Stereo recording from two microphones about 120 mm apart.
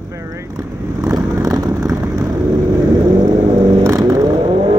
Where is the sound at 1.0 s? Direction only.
30° right (ahead or behind).